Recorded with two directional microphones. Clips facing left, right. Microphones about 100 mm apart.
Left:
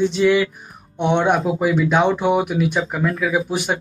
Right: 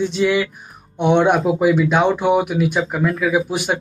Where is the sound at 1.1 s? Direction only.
Centre (ahead or behind).